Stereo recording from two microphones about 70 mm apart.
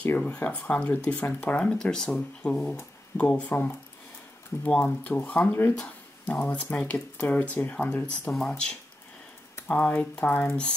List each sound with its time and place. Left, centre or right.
0.2 s speech: centre
8.3 s speech: centre